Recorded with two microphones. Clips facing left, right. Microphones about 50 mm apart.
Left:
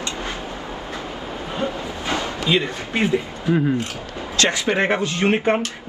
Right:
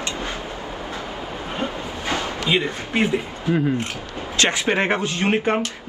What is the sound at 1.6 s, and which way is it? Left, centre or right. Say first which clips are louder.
Train: left 3 dB; right.